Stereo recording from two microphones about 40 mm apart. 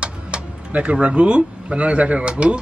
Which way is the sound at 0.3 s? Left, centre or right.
Right.